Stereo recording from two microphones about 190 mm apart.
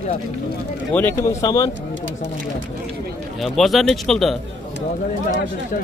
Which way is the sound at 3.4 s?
Centre (ahead or behind).